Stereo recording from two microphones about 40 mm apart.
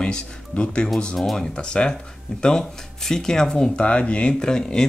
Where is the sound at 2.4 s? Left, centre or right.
Centre.